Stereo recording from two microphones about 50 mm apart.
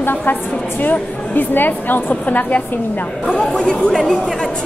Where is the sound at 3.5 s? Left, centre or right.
Centre.